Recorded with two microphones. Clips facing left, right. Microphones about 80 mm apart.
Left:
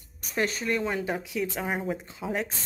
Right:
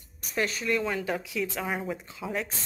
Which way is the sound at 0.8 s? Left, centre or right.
Left.